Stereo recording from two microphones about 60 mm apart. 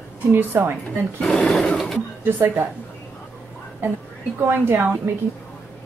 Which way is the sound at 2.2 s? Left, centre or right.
Right.